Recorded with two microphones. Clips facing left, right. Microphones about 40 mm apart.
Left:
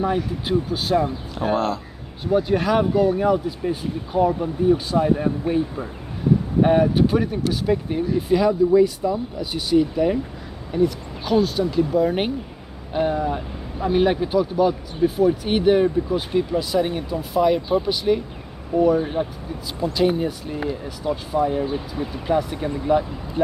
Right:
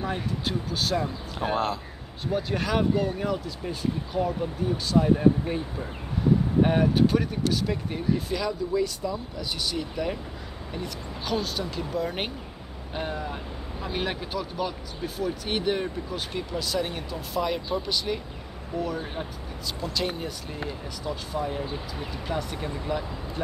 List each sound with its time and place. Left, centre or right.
0.0 s speech: centre
1.3 s speech: centre
2.3 s speech: centre
6.6 s speech: centre